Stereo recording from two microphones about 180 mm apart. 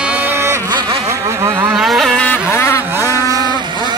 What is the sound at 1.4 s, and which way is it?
Vehicle, 15° right (ahead or behind).